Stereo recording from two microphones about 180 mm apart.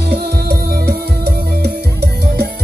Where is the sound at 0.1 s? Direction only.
65° right (ahead or behind).